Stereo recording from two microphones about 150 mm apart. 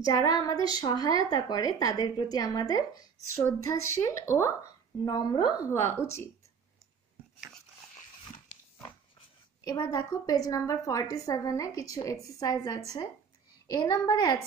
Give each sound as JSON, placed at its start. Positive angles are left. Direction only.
{"t": 0.0, "sound": "a woman's voice", "side_deg": 25}
{"t": 5.7, "sound": "speech", "side_deg": 15}
{"t": 9.7, "sound": "a woman's voice", "side_deg": 25}